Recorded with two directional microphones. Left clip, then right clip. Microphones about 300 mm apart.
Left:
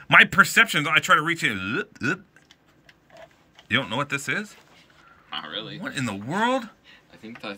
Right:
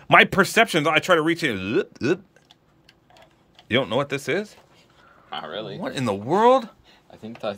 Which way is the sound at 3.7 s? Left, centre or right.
Centre.